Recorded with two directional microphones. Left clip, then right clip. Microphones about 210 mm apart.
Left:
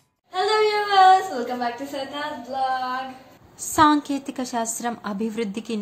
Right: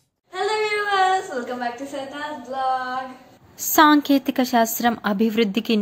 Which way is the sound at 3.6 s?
25° right (ahead or behind).